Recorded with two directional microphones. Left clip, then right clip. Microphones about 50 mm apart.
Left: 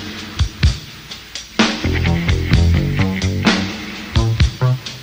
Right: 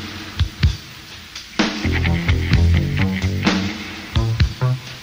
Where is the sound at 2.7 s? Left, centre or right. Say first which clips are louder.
Left 2 dB; left.